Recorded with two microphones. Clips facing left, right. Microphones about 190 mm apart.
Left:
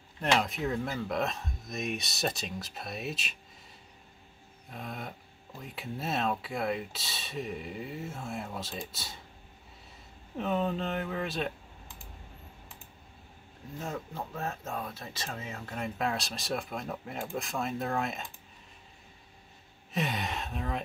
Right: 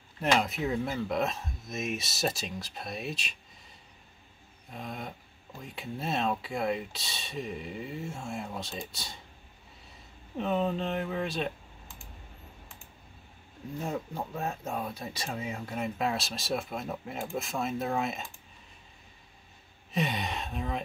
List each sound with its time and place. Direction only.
0.2 s speech: centre (ahead or behind)
4.7 s speech: centre (ahead or behind)
10.3 s speech: centre (ahead or behind)
13.7 s speech: 15° right (ahead or behind)
15.8 s speech: centre (ahead or behind)
19.9 s speech: centre (ahead or behind)